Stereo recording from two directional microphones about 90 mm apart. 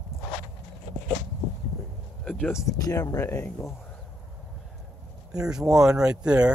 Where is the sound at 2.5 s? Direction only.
40° left (ahead or behind).